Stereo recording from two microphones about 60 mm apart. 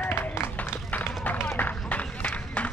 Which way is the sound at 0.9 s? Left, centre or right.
Left.